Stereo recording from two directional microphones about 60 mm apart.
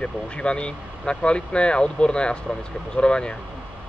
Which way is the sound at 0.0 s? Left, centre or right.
Centre.